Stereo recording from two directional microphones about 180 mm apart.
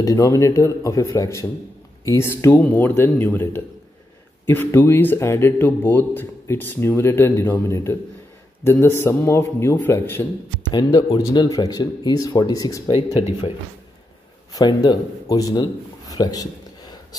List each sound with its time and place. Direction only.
0.0 s a man's voice: 20° left (ahead or behind)
12.9 s speech: 30° left (ahead or behind)
14.5 s a man's voice: 20° left (ahead or behind)